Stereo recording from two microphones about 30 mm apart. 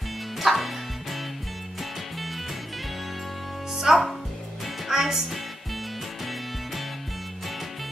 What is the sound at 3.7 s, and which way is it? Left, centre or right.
Music, centre.